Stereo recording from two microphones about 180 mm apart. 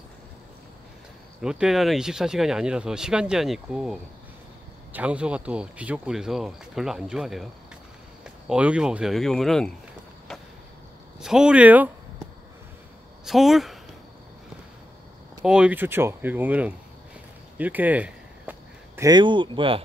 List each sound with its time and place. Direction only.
1.4 s speech: 5° right (ahead or behind)
8.5 s speech: 5° right (ahead or behind)
11.1 s speech: 5° right (ahead or behind)
13.2 s speech: centre (ahead or behind)
15.4 s speech: 5° right (ahead or behind)
17.6 s a sound: 10° right (ahead or behind)
19.0 s speech: 25° right (ahead or behind)